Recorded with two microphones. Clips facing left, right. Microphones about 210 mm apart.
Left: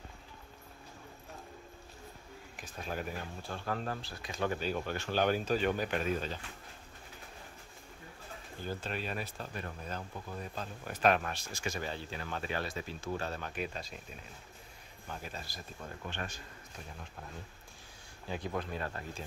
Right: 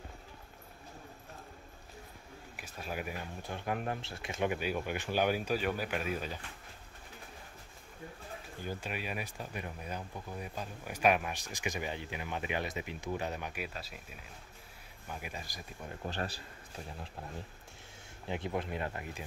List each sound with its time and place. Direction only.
2.5 s speech: 10° right (ahead or behind)
8.6 s speech: 10° right (ahead or behind)
15.0 s speech: 10° right (ahead or behind)
16.0 s speech: 35° right (ahead or behind)
18.3 s speech: 20° right (ahead or behind)